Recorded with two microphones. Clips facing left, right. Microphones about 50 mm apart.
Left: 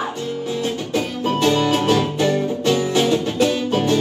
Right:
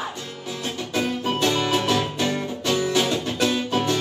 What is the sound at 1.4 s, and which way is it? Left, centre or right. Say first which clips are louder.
Music: left 6 dB; left.